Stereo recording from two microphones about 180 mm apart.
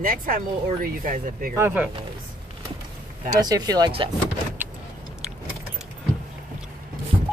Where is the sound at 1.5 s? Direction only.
10° right (ahead or behind).